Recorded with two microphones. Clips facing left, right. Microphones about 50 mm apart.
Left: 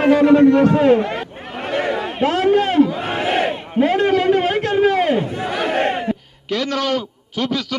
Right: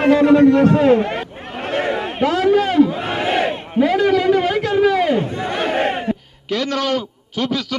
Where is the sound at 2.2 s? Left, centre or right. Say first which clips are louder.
Even; left.